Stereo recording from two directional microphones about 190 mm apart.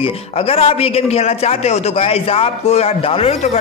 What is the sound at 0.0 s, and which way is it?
A man's voice, 30° left (ahead or behind).